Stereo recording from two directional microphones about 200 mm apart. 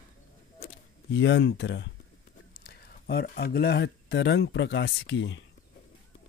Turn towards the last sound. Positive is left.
turn(degrees=70)  # may be behind; listen again after turning